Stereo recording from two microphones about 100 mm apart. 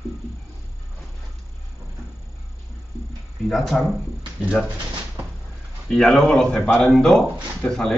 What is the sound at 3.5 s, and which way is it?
Speech, centre (ahead or behind).